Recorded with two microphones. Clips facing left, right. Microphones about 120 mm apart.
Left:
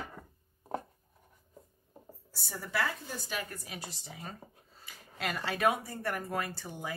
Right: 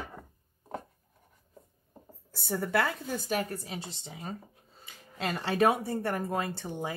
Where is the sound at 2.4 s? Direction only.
55° right (ahead or behind).